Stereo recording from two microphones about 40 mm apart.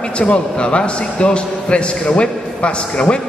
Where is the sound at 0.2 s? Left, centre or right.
Left.